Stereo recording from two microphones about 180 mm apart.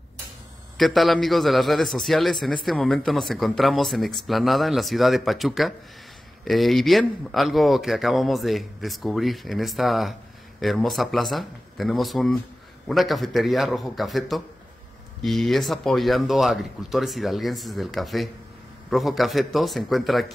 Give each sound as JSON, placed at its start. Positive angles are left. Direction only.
{"t": 0.7, "sound": "a man's voice", "side_deg": 0}